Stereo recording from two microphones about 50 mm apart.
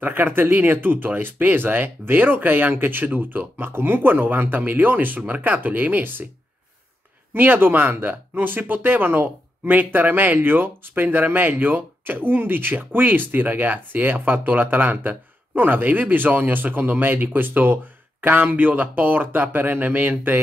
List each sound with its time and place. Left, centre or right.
0.0 s speech: right
7.3 s speech: right